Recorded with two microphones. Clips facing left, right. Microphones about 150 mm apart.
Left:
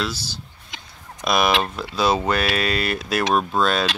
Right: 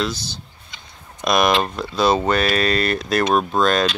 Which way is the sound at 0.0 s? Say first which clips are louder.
Right 3 dB; 5° left (ahead or behind).